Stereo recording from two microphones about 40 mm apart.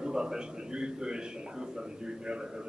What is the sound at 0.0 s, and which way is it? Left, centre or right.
A man's voice, centre.